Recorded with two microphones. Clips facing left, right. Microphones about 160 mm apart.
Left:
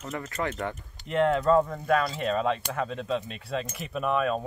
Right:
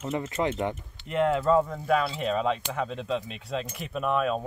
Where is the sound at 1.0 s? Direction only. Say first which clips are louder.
Left 1 dB; centre (ahead or behind).